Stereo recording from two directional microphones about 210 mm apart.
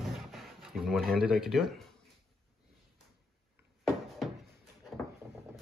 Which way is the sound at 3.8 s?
Centre (ahead or behind).